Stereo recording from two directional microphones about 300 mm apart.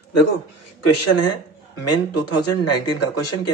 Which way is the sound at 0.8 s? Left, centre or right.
Left.